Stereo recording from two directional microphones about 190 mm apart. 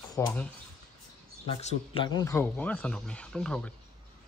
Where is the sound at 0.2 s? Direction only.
10° left (ahead or behind).